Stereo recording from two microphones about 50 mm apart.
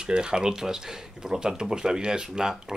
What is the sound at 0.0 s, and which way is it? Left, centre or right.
Speech, centre.